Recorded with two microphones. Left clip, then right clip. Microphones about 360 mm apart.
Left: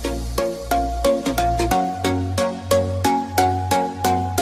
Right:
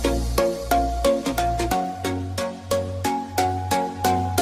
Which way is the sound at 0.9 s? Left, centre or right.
Centre.